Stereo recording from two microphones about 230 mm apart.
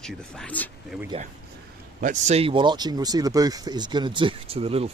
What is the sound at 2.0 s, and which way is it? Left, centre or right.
Speech, right.